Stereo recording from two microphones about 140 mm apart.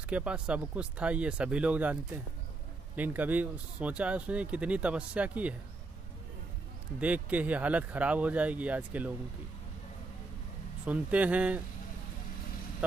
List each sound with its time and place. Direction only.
0.1 s speech: 10° right (ahead or behind)
3.0 s speech: 10° right (ahead or behind)
7.0 s speech: 10° right (ahead or behind)
10.9 s speech: 10° right (ahead or behind)